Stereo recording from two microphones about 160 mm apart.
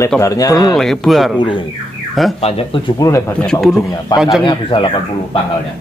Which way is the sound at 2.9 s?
20° left (ahead or behind).